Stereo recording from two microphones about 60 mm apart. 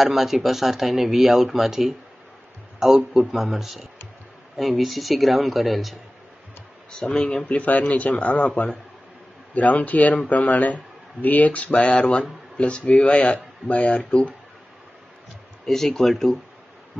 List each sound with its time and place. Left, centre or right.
0.0 s speech: centre
3.1 s speech: centre
6.9 s speech: centre
15.6 s speech: centre